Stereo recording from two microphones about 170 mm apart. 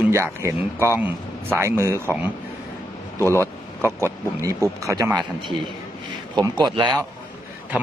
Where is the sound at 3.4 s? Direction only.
15° right (ahead or behind).